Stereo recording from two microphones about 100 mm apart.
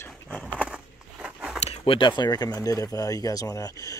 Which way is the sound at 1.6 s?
90° left.